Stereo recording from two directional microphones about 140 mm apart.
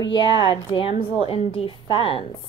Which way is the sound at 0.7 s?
40° left (ahead or behind).